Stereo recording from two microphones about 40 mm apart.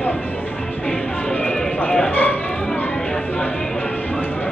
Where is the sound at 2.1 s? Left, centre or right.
Left.